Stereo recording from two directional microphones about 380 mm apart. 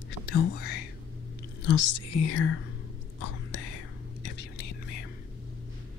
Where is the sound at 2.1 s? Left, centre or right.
Left.